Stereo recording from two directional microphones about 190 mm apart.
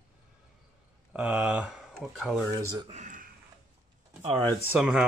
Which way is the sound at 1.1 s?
5° right (ahead or behind).